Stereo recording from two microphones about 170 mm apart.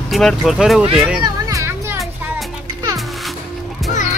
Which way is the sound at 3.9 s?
45° left (ahead or behind).